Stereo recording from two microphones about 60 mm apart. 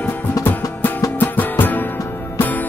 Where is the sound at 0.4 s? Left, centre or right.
Left.